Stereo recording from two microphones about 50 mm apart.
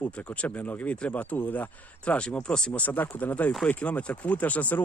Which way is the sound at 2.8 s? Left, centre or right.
Left.